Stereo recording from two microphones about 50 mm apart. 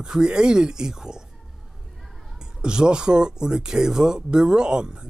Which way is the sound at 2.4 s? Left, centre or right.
Centre.